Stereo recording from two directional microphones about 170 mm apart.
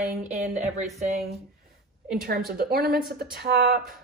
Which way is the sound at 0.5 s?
45° right (ahead or behind).